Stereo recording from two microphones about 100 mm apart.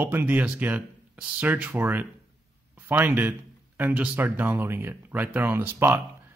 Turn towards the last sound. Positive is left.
turn(degrees=-20)  # may be behind; listen again after turning